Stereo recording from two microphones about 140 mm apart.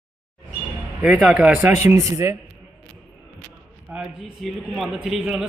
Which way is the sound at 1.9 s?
25° right (ahead or behind).